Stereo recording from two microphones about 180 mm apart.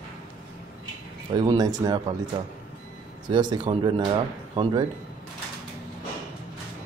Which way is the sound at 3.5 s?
25° right (ahead or behind).